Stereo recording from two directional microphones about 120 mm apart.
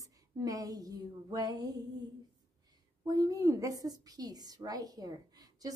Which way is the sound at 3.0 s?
30° right (ahead or behind).